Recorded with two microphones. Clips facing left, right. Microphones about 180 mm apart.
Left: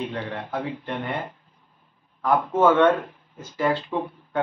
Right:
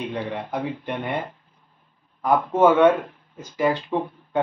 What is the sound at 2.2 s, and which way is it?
Speech, 15° right (ahead or behind).